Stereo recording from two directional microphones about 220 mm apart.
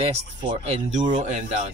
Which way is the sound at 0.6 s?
30° right (ahead or behind).